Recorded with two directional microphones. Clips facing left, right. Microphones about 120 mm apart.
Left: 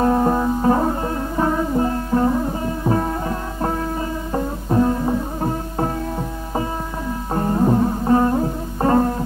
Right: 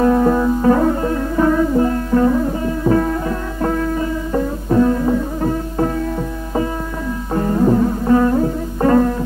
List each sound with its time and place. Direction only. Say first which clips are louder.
0.0 s music: right 3 dB; 25° left (ahead or behind)
7.3 s music: right 3 dB; 30° left (ahead or behind)